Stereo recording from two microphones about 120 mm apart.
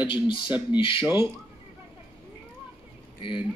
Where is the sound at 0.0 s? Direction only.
40° left (ahead or behind).